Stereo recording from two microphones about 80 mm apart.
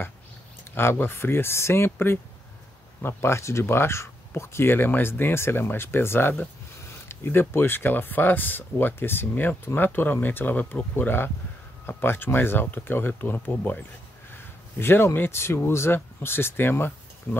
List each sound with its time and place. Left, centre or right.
0.7 s speech: left